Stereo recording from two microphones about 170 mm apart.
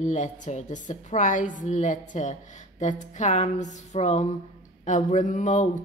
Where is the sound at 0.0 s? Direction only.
45° left (ahead or behind).